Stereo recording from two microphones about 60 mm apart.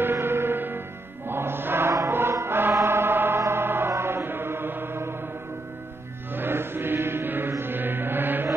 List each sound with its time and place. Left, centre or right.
0.0 s music: right
3.9 s chant: right
6.3 s mantra: right